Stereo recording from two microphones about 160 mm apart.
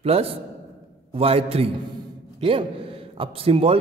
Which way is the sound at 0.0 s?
40° right (ahead or behind).